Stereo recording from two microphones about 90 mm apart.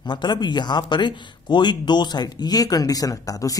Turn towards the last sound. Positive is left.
turn(degrees=40)  # may be behind; listen again after turning